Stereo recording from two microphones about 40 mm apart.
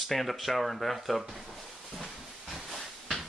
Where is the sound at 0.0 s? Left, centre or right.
Centre.